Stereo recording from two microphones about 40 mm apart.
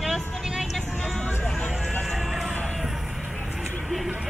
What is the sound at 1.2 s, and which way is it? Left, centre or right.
Vehicle, left.